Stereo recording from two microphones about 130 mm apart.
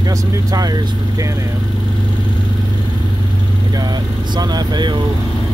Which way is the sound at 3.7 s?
30° right (ahead or behind).